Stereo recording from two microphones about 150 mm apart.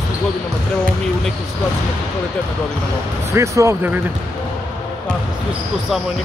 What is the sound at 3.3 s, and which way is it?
Speech, 20° right (ahead or behind).